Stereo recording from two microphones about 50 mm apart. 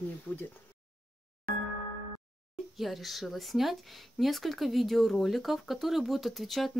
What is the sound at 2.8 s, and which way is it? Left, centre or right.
Speech, centre.